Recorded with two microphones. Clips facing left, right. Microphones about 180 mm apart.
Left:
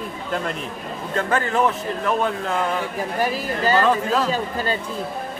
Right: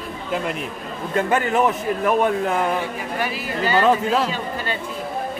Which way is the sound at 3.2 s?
40° left (ahead or behind).